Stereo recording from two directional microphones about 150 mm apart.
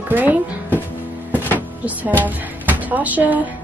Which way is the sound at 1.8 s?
10° right (ahead or behind).